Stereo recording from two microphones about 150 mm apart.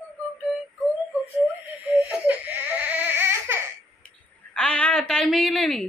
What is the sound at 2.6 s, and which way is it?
Baby cry, 10° right (ahead or behind).